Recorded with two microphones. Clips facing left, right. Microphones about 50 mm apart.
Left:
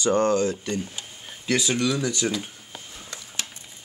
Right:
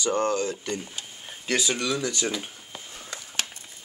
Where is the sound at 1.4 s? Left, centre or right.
Centre.